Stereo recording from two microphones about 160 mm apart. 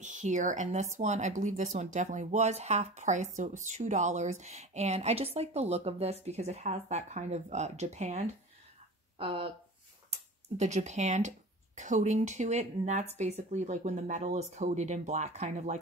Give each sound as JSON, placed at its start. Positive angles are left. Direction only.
{"t": 0.0, "sound": "speech", "side_deg": -50}
{"t": 9.2, "sound": "speech", "side_deg": -35}
{"t": 10.1, "sound": "speech", "side_deg": -45}